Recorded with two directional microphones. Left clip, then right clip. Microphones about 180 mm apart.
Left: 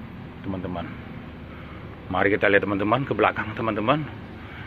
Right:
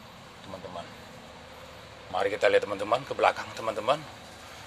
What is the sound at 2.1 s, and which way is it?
Speech, 10° right (ahead or behind).